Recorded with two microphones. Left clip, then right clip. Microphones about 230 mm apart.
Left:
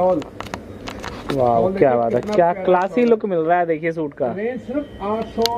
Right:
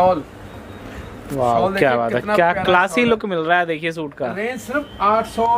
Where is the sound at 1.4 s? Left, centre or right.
Right.